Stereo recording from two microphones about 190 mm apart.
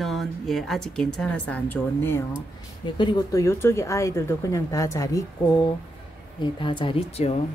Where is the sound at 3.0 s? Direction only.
20° left (ahead or behind).